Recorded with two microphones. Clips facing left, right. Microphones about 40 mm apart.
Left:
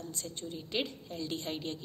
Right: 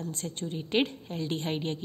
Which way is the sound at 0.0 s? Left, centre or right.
Right.